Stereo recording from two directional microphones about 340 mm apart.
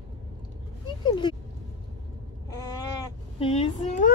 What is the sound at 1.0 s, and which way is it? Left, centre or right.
Speech, centre.